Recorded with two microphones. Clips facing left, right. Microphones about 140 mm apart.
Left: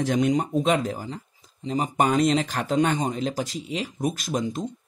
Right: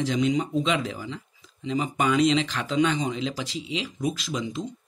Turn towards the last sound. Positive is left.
turn(degrees=50)  # may be behind; listen again after turning